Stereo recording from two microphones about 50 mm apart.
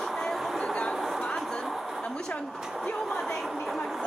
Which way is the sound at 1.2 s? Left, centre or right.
Centre.